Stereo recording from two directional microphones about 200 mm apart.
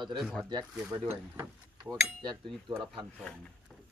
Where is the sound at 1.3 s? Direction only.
10° right (ahead or behind).